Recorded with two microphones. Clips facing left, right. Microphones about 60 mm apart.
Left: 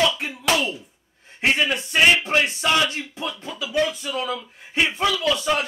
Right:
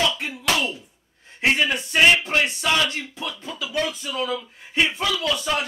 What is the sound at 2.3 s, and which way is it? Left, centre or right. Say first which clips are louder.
Speech: left 1 dB; centre.